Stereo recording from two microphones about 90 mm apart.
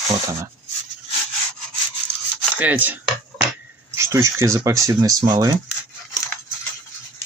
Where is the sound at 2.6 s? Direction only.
20° right (ahead or behind).